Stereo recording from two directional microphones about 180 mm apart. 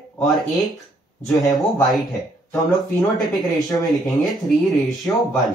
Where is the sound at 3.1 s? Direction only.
Centre (ahead or behind).